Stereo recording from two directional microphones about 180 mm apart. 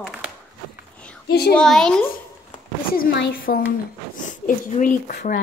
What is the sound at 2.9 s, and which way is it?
Speech, 60° left (ahead or behind).